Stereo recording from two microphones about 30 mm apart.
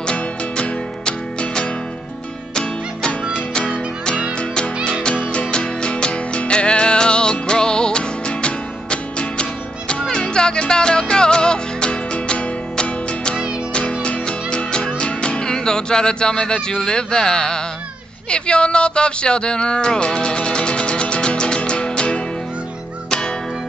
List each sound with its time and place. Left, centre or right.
0.1 s music: left
5.5 s music: left